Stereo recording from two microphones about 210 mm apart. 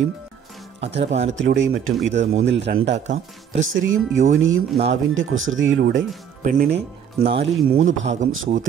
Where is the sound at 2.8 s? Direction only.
35° right (ahead or behind).